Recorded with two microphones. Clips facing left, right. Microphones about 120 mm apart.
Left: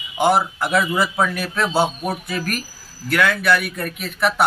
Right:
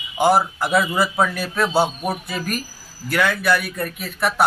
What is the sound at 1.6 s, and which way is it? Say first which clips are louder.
Speech: right 1 dB; 5° right (ahead or behind).